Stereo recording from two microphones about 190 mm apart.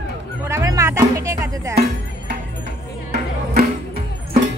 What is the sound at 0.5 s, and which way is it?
Music, 15° right (ahead or behind).